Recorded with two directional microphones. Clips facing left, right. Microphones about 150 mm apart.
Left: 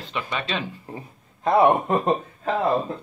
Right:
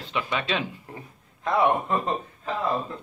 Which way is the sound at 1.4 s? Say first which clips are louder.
Left 5 dB; 35° left (ahead or behind).